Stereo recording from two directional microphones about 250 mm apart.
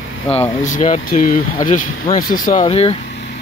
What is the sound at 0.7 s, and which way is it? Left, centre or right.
Speech, left.